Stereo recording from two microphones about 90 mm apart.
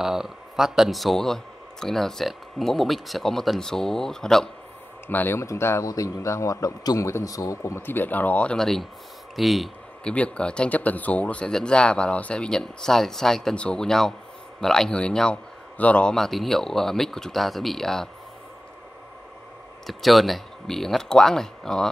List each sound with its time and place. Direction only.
0.0 s a man's voice: 5° right (ahead or behind)
5.0 s a man's voice: 25° left (ahead or behind); by 9.7 s centre (ahead or behind)
10.0 s a man's voice: 15° left (ahead or behind)
19.9 s a man's voice: centre (ahead or behind)